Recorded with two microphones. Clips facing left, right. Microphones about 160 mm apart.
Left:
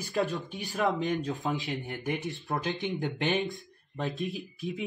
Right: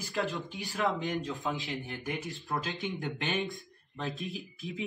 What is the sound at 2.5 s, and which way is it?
Speech, 20° left (ahead or behind).